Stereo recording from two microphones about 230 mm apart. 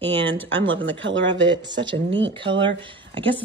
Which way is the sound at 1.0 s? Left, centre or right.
Right.